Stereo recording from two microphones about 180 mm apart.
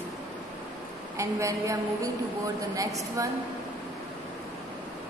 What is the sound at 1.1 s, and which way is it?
A woman's voice, 15° right (ahead or behind).